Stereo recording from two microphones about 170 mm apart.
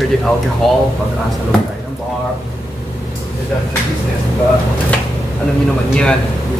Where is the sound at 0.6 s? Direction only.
Centre (ahead or behind).